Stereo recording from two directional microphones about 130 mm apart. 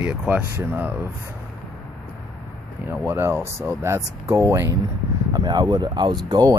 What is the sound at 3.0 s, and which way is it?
Speech, 15° right (ahead or behind).